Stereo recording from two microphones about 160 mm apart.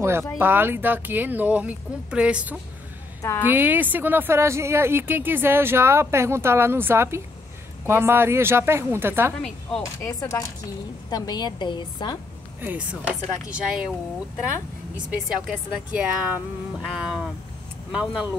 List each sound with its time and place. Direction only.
0.4 s speech: 15° right (ahead or behind)
3.2 s a woman's voice: 15° left (ahead or behind)
3.4 s speech: 10° right (ahead or behind)
9.4 s a woman's voice: 5° left (ahead or behind)
9.8 s speech: 15° left (ahead or behind)
12.5 s speech: 10° right (ahead or behind)
15.0 s a woman's voice: 5° right (ahead or behind)